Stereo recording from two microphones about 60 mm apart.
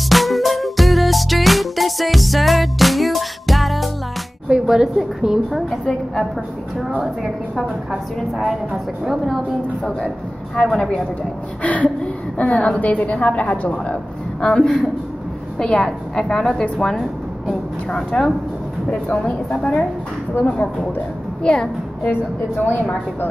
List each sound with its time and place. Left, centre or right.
0.1 s music: centre
4.5 s a woman's voice: centre
8.3 s a woman's voice: centre
9.8 s speech: centre
11.6 s a woman's voice: left; by 18.3 s centre
19.6 s speech: centre
20.3 s a woman's voice: left
21.4 s a woman's voice: centre